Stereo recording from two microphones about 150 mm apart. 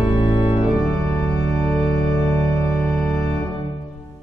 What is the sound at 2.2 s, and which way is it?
Music, 15° left (ahead or behind).